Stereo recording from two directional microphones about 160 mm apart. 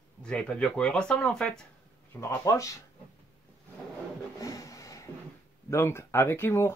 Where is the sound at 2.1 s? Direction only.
20° left (ahead or behind).